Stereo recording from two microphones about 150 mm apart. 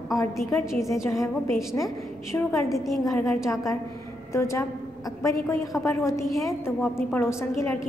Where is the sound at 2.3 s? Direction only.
20° left (ahead or behind).